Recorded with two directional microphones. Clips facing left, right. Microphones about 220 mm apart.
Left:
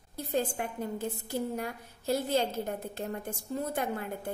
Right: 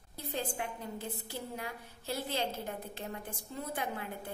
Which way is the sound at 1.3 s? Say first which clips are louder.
Left 8 dB; 45° left (ahead or behind).